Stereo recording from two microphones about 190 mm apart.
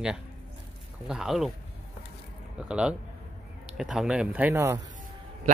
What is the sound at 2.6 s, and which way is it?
Speech, 5° right (ahead or behind).